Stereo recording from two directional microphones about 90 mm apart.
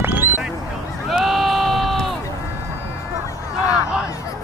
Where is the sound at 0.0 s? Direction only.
25° right (ahead or behind).